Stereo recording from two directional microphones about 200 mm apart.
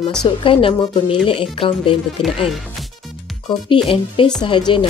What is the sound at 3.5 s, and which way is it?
A woman's voice, 25° left (ahead or behind).